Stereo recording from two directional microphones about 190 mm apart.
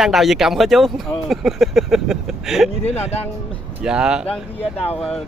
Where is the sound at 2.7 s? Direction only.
30° left (ahead or behind).